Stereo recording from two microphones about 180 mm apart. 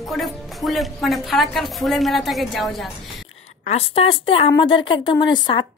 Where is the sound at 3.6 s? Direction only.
35° left (ahead or behind).